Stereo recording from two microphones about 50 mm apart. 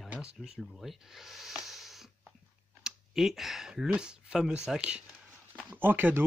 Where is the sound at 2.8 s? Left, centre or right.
Centre.